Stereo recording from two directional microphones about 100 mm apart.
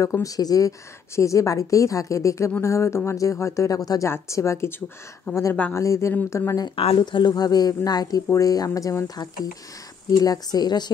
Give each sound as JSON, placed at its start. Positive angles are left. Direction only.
{"t": 0.0, "sound": "a woman's voice", "side_deg": 35}
{"t": 6.7, "sound": "speech", "side_deg": 80}
{"t": 7.0, "sound": "a woman's voice", "side_deg": 45}